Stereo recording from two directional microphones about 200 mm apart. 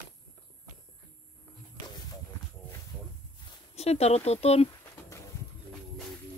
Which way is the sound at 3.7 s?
30° left (ahead or behind).